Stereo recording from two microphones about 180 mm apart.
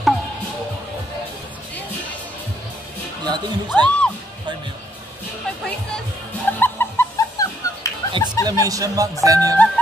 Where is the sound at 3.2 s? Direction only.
25° right (ahead or behind).